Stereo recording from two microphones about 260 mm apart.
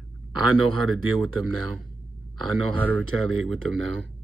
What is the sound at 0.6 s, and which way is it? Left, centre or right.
Speech, right.